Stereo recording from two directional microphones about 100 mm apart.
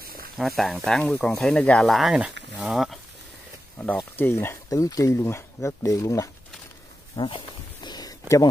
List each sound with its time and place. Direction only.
0.4 s speech: centre (ahead or behind)
1.9 s speech: centre (ahead or behind)
3.7 s speech: 20° left (ahead or behind)
7.2 s walk: 60° left (ahead or behind)
7.9 s a sound: 40° left (ahead or behind)